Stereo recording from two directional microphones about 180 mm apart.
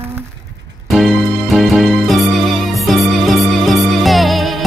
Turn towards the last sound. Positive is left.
turn(degrees=0)  # may be behind; listen again after turning